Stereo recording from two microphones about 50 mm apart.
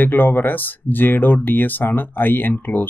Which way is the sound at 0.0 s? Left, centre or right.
Left.